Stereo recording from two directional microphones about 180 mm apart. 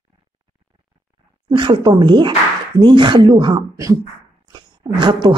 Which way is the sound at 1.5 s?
25° right (ahead or behind).